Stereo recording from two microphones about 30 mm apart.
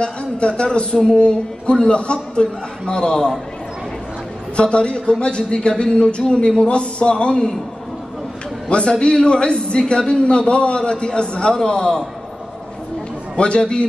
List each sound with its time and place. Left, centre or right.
0.0 s a man's voice: left
2.9 s a man's voice: left
4.6 s a man's voice: left
8.6 s a man's voice: left
13.4 s a man's voice: left